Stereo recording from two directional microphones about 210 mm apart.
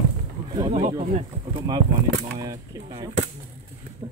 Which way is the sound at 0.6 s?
25° right (ahead or behind).